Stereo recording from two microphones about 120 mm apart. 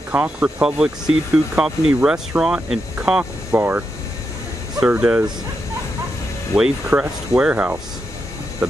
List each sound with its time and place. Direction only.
0.1 s speech: 10° right (ahead or behind)
6.5 s speech: 10° right (ahead or behind)